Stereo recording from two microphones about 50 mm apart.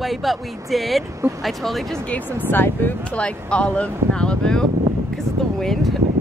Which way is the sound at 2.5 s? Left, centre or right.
Left.